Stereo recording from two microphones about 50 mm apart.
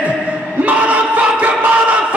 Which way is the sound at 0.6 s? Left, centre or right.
Right.